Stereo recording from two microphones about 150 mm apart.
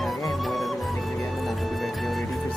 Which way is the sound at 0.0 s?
Centre (ahead or behind).